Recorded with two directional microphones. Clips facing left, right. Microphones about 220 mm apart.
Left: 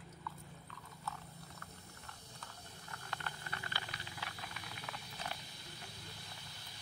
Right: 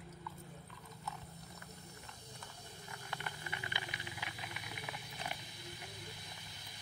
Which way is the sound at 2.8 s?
15° right (ahead or behind).